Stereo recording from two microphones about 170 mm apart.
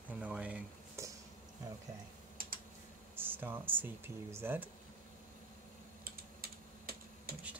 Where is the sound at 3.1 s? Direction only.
10° right (ahead or behind).